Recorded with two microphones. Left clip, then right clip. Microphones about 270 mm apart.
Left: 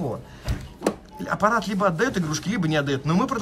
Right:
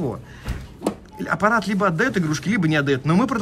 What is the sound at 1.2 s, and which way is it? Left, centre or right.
A man's voice, centre.